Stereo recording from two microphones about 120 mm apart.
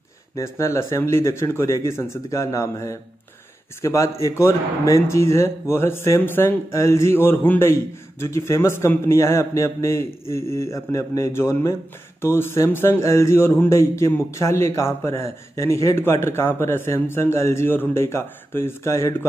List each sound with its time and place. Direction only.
0.4 s speech: 25° left (ahead or behind)